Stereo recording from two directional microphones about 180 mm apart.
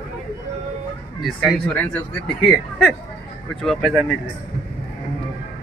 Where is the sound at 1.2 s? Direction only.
5° left (ahead or behind).